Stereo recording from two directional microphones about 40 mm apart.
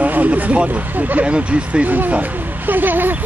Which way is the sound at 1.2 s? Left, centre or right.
Right.